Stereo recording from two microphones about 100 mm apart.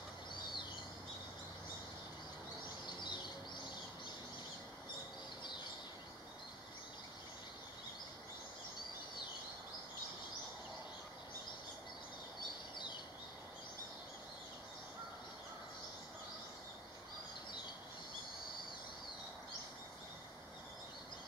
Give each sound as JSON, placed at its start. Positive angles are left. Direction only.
{"t": 3.0, "sound": "bird", "side_deg": 50}
{"t": 12.7, "sound": "bird", "side_deg": 50}